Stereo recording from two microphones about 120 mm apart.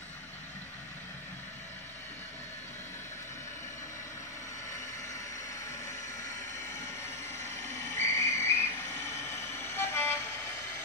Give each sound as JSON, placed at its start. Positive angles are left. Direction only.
{"t": 7.7, "sound": "whistle", "side_deg": 25}